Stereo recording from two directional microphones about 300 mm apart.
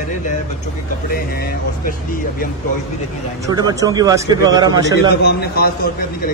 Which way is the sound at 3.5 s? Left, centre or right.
Centre.